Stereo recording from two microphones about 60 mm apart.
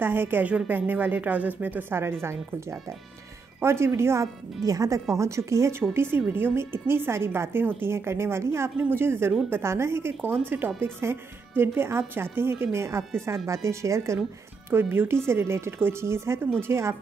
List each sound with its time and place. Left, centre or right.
0.0 s speech: right
3.6 s a woman's voice: right
4.6 s speech: right
5.1 s a woman's voice: right
14.7 s a woman's voice: right